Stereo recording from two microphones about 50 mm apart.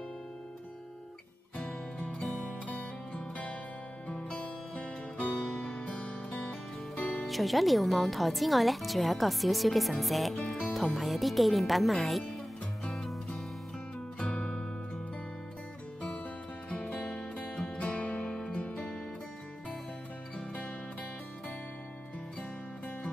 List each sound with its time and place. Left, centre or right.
2.0 s music: left
4.3 s music: left
7.0 s speech: centre
12.8 s music: centre
14.2 s music: left
17.1 s music: left